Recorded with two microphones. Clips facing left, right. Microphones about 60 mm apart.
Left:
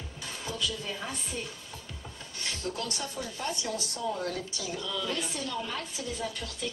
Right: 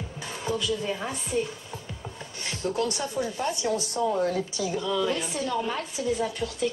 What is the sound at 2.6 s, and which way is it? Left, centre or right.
Speech, right.